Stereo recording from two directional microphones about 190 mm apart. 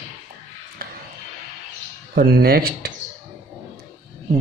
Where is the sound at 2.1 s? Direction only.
55° right (ahead or behind).